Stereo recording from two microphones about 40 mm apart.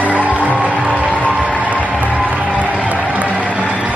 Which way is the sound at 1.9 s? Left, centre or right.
Right.